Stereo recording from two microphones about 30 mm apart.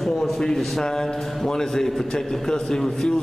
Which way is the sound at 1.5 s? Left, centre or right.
Centre.